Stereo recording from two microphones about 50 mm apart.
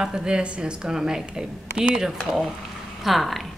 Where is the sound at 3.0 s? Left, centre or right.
Centre.